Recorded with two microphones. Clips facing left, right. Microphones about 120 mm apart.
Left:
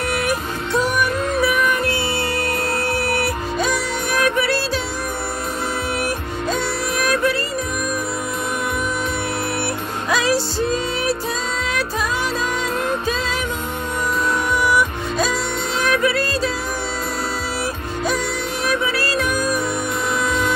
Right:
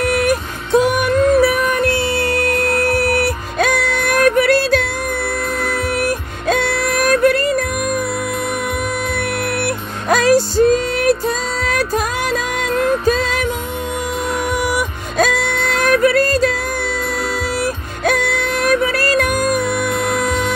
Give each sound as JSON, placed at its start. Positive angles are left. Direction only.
{"t": 0.1, "sound": "music", "side_deg": -45}
{"t": 3.5, "sound": "music", "side_deg": -60}
{"t": 7.0, "sound": "music", "side_deg": -45}
{"t": 10.0, "sound": "music", "side_deg": -45}
{"t": 14.6, "sound": "music", "side_deg": -50}
{"t": 18.0, "sound": "music", "side_deg": -60}